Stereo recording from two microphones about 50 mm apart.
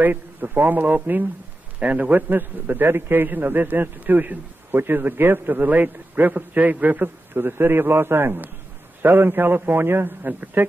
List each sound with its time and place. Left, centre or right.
0.0 s a man's voice: right